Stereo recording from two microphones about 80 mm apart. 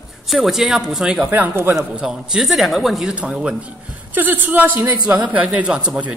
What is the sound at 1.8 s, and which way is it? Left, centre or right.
Speech, centre.